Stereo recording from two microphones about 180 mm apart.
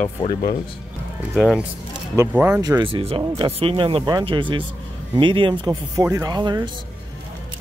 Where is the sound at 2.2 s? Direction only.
10° right (ahead or behind); by 3.2 s 30° right (ahead or behind).